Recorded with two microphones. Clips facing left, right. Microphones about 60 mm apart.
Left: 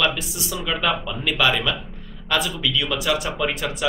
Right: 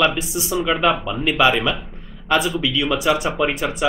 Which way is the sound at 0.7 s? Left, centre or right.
Centre.